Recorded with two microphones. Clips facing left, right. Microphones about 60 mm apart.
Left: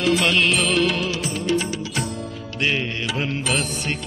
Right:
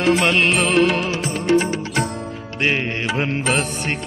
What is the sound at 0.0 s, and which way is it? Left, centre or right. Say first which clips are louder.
Music: right 3 dB; right.